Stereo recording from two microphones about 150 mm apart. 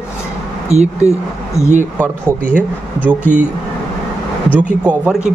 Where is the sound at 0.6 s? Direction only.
45° right (ahead or behind).